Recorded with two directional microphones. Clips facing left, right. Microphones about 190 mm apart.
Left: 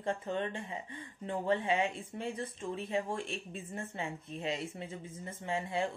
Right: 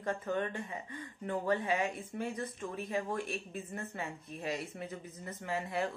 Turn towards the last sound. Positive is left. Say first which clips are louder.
# left 1 dB
turn(degrees=25)  # may be behind; listen again after turning